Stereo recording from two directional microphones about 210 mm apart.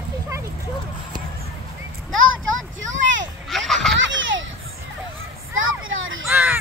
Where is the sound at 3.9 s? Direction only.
60° right (ahead or behind).